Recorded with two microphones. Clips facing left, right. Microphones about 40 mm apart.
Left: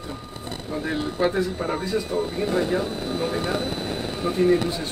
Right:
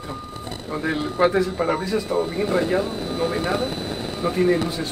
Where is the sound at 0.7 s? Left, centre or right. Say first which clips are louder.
Right 2 dB; right.